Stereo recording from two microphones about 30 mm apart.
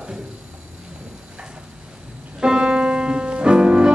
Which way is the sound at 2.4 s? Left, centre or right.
Right.